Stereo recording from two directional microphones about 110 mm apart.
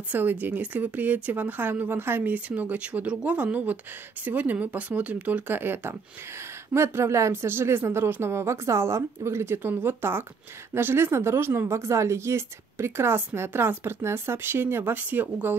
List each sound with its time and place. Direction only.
0.1 s speech: 15° right (ahead or behind)